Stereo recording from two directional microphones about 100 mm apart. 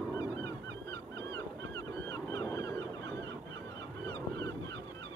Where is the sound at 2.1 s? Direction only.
30° left (ahead or behind).